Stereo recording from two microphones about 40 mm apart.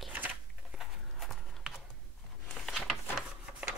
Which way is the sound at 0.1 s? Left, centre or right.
Right.